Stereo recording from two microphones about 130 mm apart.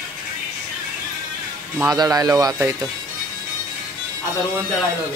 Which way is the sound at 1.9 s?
30° right (ahead or behind).